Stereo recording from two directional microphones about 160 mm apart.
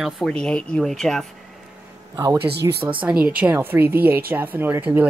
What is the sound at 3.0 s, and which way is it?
Speech, 5° right (ahead or behind).